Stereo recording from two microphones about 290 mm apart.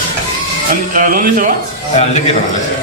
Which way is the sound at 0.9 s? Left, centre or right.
Right.